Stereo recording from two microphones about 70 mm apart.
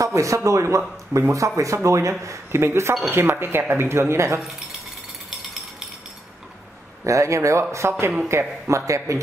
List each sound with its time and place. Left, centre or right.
0.0 s a man's voice: right
7.1 s a man's voice: right
7.8 s a man's voice: right